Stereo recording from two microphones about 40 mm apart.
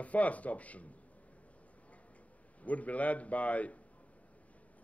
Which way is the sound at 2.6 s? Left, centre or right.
Left.